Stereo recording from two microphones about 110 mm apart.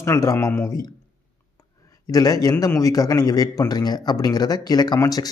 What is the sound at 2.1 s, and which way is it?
Speech, 35° left (ahead or behind).